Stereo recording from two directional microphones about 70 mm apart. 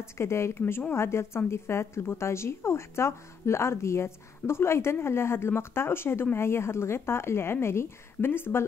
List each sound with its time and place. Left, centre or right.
0.0 s a woman's voice: left